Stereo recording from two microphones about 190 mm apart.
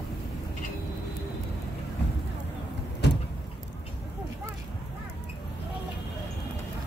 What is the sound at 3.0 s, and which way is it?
Vehicle, 65° left (ahead or behind).